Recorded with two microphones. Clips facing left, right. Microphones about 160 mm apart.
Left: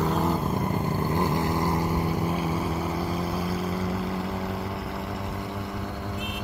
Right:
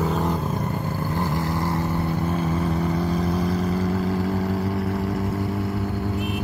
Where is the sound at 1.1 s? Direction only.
15° left (ahead or behind); by 4.1 s centre (ahead or behind).